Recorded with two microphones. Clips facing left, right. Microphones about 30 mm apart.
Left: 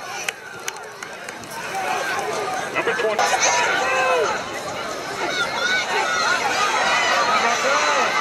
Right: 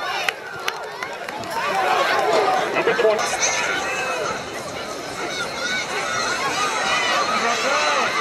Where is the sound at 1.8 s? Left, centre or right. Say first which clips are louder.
Right 4 dB; right.